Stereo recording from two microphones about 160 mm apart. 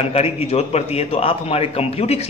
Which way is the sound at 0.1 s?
40° left (ahead or behind).